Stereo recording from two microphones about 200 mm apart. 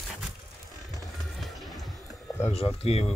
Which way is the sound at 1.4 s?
Centre (ahead or behind).